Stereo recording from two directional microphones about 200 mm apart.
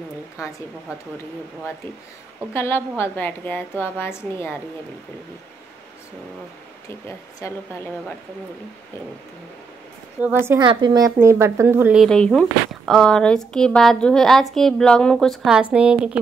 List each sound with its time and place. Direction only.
2.5 s a woman's voice: 10° left (ahead or behind)
7.1 s a woman's voice: 15° left (ahead or behind)
10.2 s a woman's voice: 10° right (ahead or behind)
10.6 s a woman's voice: 25° right (ahead or behind); by 16.2 s 5° right (ahead or behind)